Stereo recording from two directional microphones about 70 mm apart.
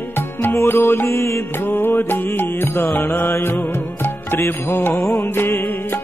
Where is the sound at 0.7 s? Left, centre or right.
Left.